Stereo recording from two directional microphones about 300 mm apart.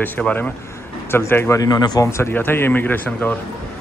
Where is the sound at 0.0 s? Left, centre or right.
Centre.